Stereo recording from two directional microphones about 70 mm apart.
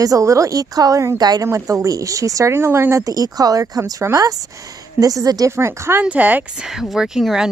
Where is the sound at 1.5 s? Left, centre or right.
Right.